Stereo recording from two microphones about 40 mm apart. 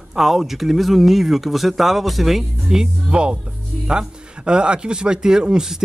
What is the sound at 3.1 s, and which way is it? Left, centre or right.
Speech, right.